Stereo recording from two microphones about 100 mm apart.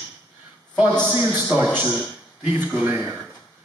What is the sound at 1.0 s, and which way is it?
A man's voice, 15° right (ahead or behind).